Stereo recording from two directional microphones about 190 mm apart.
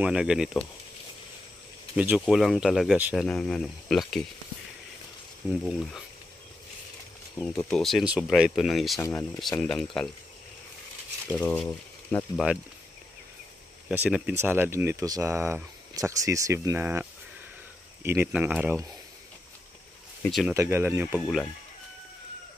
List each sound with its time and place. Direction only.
0.0 s speech: 5° right (ahead or behind)
2.0 s speech: 5° right (ahead or behind)
5.5 s speech: centre (ahead or behind)
7.3 s speech: 10° left (ahead or behind)
7.6 s speech: centre (ahead or behind)
11.3 s speech: 5° left (ahead or behind)
13.8 s speech: 5° right (ahead or behind)
20.2 s speech: centre (ahead or behind)
20.5 s speech: 10° right (ahead or behind)